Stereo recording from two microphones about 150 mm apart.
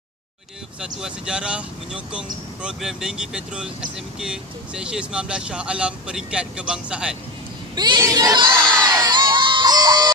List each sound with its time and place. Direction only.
0.7 s speech: 5° right (ahead or behind)
7.7 s a sound: 30° right (ahead or behind)
8.5 s crowd: 5° left (ahead or behind)
8.8 s children shouting: 25° right (ahead or behind)